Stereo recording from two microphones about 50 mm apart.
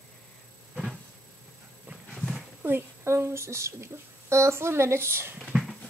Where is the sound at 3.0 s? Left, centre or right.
Right.